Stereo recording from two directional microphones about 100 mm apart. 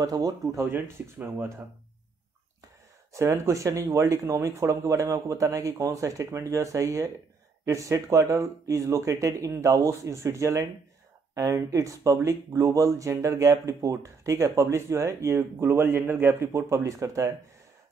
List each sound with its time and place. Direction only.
0.0 s speech: 35° right (ahead or behind)
0.7 s speech: 25° right (ahead or behind)
3.1 s speech: 30° right (ahead or behind)